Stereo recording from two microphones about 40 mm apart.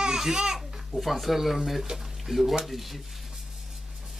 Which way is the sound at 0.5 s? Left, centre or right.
Centre.